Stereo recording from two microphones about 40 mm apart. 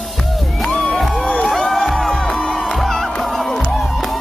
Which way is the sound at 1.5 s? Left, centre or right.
Centre.